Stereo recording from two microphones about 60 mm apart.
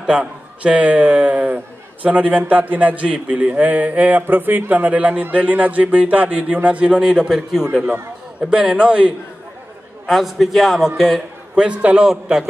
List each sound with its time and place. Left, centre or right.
0.0 s a man's voice: centre
7.9 s a man's voice: right
10.0 s a man's voice: centre
11.5 s a man's voice: centre